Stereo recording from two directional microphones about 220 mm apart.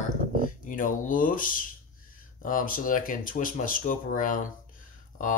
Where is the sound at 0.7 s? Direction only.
35° left (ahead or behind).